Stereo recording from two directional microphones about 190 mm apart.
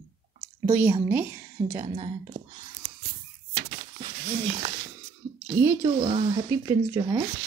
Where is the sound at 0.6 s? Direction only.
10° right (ahead or behind).